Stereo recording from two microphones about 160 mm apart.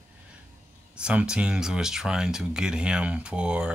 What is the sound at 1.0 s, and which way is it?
Speech, 5° right (ahead or behind).